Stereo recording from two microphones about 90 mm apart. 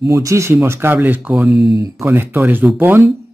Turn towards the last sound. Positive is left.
turn(degrees=-20)  # may be behind; listen again after turning